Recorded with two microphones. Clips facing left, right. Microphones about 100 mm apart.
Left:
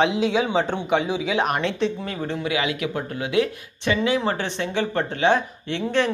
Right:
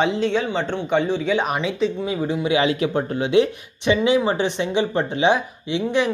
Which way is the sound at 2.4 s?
30° right (ahead or behind).